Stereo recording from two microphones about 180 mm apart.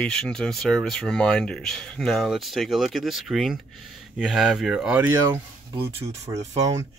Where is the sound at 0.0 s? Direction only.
5° left (ahead or behind).